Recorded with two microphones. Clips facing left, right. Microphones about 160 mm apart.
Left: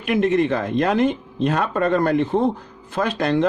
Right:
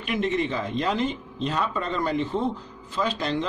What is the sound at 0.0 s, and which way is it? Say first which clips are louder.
Speech: left 7 dB; 55° left (ahead or behind).